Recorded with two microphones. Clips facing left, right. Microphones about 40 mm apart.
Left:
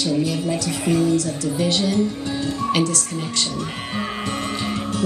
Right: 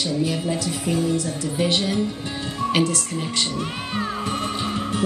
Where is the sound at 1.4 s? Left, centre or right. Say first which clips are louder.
Left 1 dB; centre.